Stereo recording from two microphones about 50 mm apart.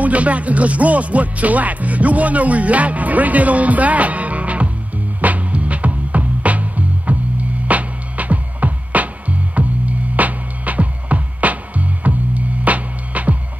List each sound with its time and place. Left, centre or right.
0.0 s music: right